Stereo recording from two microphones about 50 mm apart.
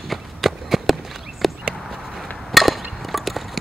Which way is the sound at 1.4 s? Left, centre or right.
Centre.